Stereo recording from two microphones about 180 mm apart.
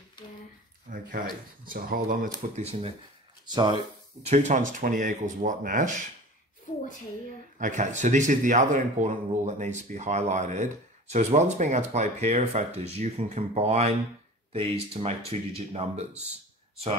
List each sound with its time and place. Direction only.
0.9 s speech: 50° right (ahead or behind)
2.5 s speech: 35° right (ahead or behind)
3.5 s speech: 25° right (ahead or behind)
4.2 s speech: 40° right (ahead or behind)
7.5 s speech: 40° right (ahead or behind)